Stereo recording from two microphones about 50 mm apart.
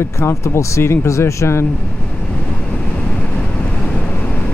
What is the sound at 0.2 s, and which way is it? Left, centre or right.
Speech, left.